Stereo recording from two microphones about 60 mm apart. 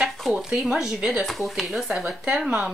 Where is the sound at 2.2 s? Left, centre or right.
Centre.